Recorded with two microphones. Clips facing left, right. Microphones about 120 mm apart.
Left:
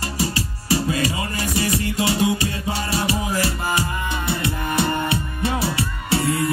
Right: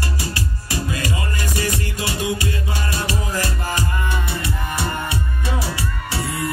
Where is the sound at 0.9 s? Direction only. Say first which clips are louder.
Left 2 dB; 25° left (ahead or behind).